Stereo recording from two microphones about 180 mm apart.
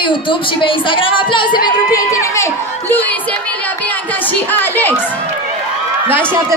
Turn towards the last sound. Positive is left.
turn(degrees=-15)  # may be behind; listen again after turning